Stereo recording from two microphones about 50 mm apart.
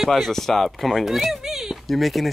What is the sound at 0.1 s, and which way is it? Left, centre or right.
Speech, centre.